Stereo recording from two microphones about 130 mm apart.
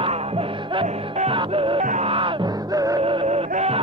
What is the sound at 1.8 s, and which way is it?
Music, 70° right (ahead or behind).